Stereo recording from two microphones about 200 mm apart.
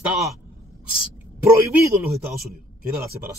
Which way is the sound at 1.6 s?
15° right (ahead or behind).